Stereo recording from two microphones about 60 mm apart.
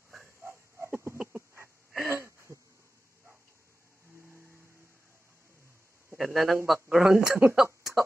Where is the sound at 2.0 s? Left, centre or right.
Right.